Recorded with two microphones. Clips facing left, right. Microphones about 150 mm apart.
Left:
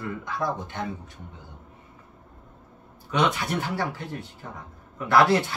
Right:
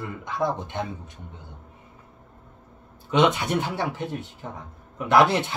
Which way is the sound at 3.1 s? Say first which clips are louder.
Right 4 dB; 20° right (ahead or behind).